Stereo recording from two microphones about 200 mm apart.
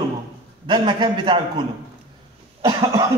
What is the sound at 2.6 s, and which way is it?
Cough, 15° right (ahead or behind).